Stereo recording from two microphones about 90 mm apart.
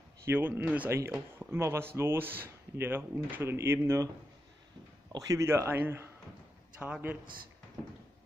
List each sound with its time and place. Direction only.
0.3 s speech: 20° right (ahead or behind)
0.8 s speech: 30° right (ahead or behind)
5.4 s a man's voice: 30° right (ahead or behind)